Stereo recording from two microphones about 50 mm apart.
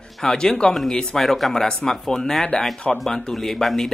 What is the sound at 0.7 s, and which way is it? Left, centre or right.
Speech, centre.